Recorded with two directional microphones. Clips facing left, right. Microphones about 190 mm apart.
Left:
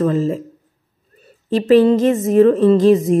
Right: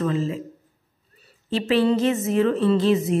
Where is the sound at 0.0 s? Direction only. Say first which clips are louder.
Left 7 dB; 45° left (ahead or behind).